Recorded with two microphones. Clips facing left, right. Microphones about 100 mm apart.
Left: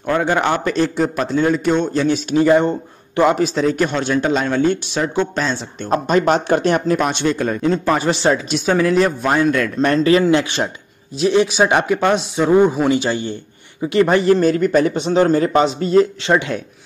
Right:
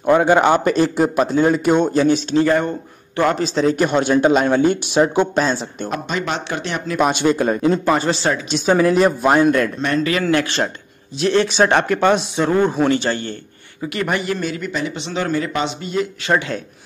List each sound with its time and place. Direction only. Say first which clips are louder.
0.3 s a man's voice: right 4 dB; 20° right (ahead or behind)
0.7 s speech: right 2 dB; 10° right (ahead or behind)
2.3 s a man's voice: left 3 dB; 15° left (ahead or behind)
3.6 s speech: right 2 dB; 5° right (ahead or behind)
5.9 s speech: left 8 dB; 40° left (ahead or behind)
7.0 s speech: right 2 dB; 5° right (ahead or behind)
7.7 s speech: even; 5° right (ahead or behind)
8.0 s a man's voice: left 3 dB; 20° left (ahead or behind)
8.5 s speech: right 1 dB; centre (ahead or behind)
9.8 s speech: left 5 dB; 35° left (ahead or behind)
10.2 s a man's voice: left 2 dB; 15° left (ahead or behind)
13.8 s speech: left 8 dB; 25° left (ahead or behind)
16.3 s speech: left 2 dB; 20° left (ahead or behind)